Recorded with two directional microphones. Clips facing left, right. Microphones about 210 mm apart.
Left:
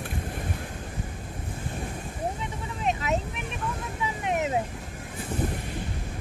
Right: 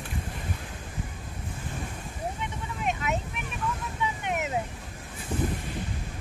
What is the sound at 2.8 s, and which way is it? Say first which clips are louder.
Vehicle: left 3 dB; 35° left (ahead or behind).